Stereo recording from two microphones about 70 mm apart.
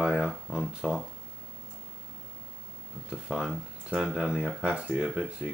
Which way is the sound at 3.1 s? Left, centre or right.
Centre.